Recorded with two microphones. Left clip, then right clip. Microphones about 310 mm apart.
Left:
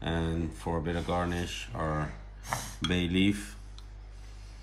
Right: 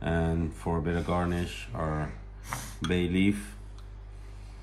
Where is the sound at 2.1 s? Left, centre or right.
Left.